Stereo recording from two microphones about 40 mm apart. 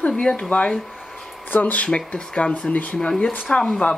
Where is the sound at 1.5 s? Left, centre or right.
Left.